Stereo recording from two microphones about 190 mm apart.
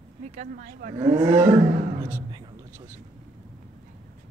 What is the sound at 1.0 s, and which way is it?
Speech, 10° right (ahead or behind).